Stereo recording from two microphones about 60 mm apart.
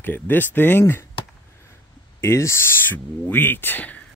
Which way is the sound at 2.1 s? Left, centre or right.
Left.